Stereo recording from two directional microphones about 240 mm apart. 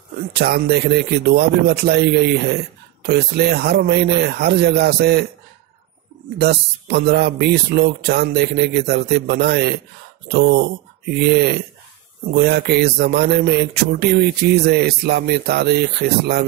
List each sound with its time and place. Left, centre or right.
0.3 s speech: right
6.3 s speech: right